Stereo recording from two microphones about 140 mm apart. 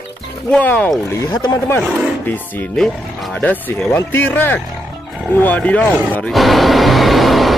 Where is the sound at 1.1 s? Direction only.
25° left (ahead or behind).